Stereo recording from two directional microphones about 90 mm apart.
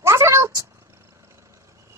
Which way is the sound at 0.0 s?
30° right (ahead or behind).